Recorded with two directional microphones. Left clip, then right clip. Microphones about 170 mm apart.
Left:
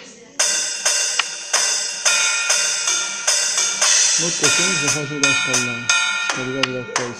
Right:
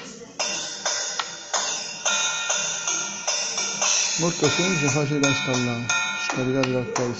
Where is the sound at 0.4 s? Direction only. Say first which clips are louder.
Left 7 dB; 25° left (ahead or behind).